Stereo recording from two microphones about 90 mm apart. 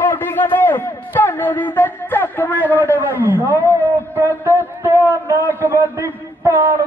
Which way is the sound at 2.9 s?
25° right (ahead or behind).